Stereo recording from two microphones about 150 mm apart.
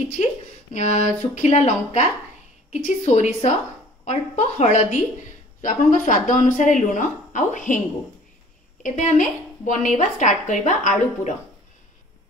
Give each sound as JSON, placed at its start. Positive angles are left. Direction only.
{"t": 0.7, "sound": "a woman's voice", "side_deg": 50}
{"t": 8.8, "sound": "a woman's voice", "side_deg": 55}